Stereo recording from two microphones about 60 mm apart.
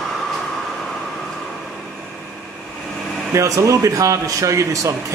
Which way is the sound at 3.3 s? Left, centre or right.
Right.